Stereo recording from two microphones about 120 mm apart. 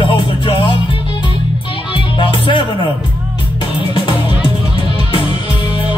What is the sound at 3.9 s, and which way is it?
Music, 40° left (ahead or behind).